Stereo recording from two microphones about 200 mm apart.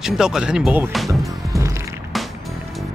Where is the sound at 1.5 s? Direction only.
15° right (ahead or behind).